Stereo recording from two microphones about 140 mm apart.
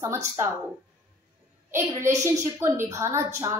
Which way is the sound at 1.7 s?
20° right (ahead or behind).